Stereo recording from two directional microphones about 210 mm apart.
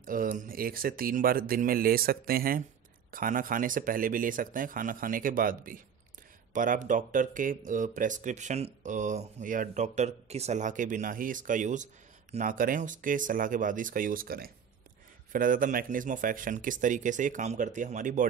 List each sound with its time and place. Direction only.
0.0 s speech: 40° right (ahead or behind)